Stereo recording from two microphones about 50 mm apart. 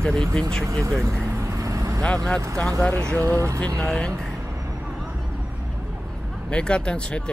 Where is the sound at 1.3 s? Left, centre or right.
Right.